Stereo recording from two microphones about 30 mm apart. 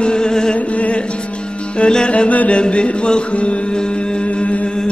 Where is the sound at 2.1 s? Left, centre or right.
Left.